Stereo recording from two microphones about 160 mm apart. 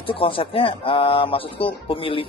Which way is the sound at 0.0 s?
35° left (ahead or behind).